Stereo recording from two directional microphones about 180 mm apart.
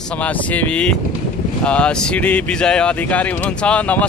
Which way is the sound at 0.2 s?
5° left (ahead or behind).